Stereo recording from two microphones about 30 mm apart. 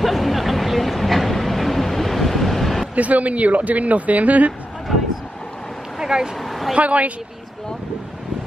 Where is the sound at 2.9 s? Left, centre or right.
Right.